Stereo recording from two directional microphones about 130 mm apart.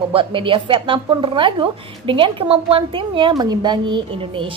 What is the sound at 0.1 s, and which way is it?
A woman's voice, 40° right (ahead or behind).